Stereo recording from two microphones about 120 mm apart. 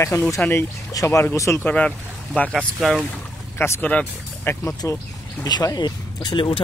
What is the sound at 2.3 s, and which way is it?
Speech, 5° left (ahead or behind).